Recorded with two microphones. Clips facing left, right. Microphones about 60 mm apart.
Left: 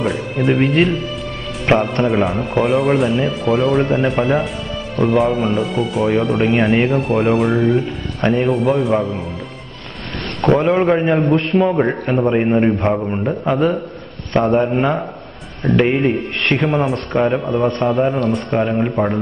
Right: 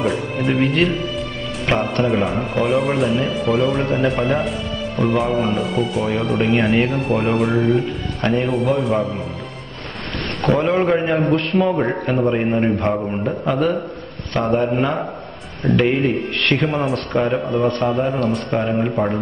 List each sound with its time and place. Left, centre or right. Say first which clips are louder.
0.0 s speech: left 2 dB; centre
1.7 s speech: left 5 dB; left
2.2 s speech: left 2 dB; centre
10.5 s speech: left 3 dB; centre
11.3 s a man's voice: left 2 dB; centre
11.7 s a man's voice: left 2 dB; centre